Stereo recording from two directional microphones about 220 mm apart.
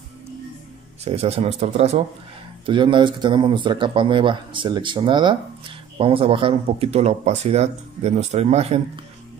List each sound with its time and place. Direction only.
1.0 s speech: 30° right (ahead or behind)